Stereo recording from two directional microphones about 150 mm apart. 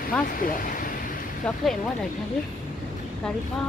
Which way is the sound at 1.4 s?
5° left (ahead or behind).